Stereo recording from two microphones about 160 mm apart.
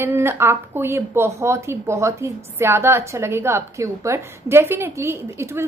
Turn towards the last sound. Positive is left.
turn(degrees=-15)  # may be behind; listen again after turning